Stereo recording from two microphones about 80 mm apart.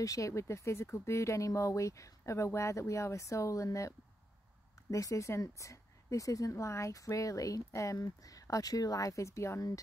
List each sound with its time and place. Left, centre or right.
0.0 s speech: left
4.9 s speech: left